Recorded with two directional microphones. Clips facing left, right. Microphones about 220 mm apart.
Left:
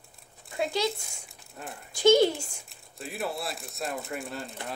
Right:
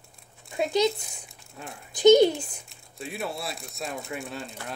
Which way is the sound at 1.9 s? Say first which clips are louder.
Right 4 dB; 20° right (ahead or behind).